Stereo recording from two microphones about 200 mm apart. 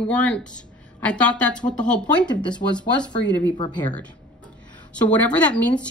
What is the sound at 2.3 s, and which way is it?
Speech, 20° left (ahead or behind).